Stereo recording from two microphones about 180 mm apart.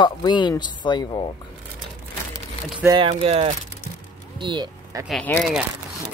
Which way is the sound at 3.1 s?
35° right (ahead or behind).